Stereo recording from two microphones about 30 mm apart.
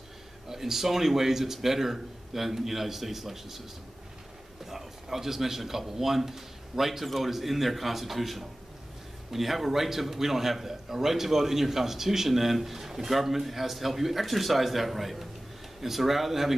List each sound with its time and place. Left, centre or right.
0.5 s a man's voice: centre
4.6 s a man's voice: centre